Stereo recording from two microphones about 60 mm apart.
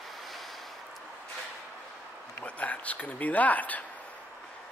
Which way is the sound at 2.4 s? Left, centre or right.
Left.